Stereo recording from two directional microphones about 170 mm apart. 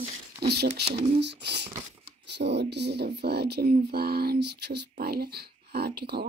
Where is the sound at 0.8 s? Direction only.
35° right (ahead or behind).